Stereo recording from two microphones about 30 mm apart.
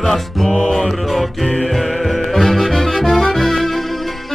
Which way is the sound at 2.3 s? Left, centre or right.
Centre.